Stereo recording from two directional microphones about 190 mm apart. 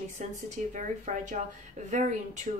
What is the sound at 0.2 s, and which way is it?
Speech, 35° right (ahead or behind).